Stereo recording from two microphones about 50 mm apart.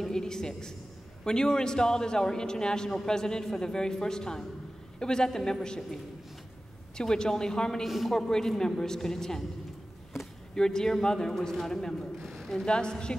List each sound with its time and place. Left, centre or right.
0.0 s a sound: centre
1.2 s a man's voice: centre
7.0 s a man's voice: centre
7.8 s a man's voice: centre
8.2 s a man's voice: centre
10.5 s a man's voice: centre
12.3 s a sound: centre
12.6 s a man's voice: centre